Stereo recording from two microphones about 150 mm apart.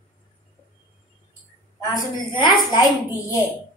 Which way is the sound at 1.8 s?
30° left (ahead or behind).